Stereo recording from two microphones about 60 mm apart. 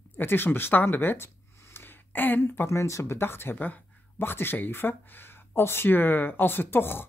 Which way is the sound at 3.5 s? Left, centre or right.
Left.